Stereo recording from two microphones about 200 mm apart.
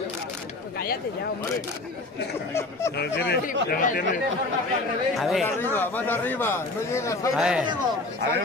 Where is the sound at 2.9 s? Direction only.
60° left (ahead or behind).